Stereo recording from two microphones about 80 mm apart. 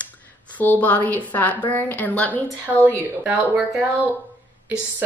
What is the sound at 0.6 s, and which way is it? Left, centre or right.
A woman's voice, left.